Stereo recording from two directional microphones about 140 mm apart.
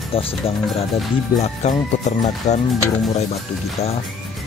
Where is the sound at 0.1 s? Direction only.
40° left (ahead or behind).